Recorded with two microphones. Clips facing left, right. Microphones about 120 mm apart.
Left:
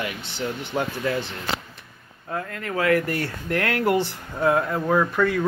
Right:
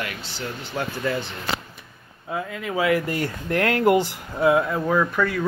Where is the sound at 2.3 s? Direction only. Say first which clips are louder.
Right 1 dB; 10° right (ahead or behind).